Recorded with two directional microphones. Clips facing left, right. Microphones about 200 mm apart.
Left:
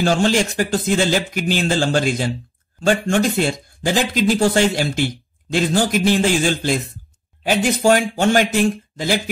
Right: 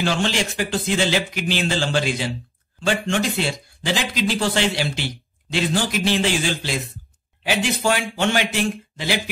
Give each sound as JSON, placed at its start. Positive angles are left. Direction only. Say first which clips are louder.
{"t": 0.0, "sound": "speech", "louder": "left 5 dB", "side_deg": 45}
{"t": 7.8, "sound": "speech", "louder": "left 6 dB", "side_deg": 45}